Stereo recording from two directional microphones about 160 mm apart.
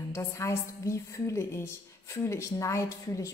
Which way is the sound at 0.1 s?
20° left (ahead or behind).